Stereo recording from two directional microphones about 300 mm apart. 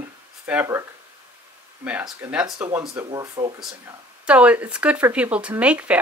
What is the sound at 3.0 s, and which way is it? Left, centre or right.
Speech, centre.